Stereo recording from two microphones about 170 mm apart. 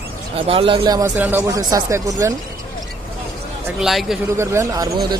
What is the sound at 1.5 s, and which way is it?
Speech, 20° right (ahead or behind).